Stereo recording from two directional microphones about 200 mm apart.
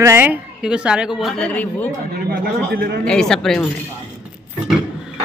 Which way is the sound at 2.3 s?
50° right (ahead or behind).